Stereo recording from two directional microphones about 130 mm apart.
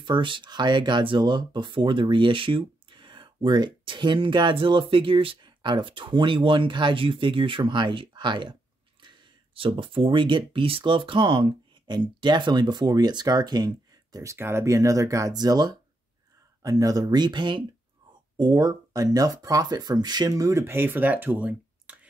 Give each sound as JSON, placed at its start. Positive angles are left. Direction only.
{"t": 0.0, "sound": "speech", "side_deg": -40}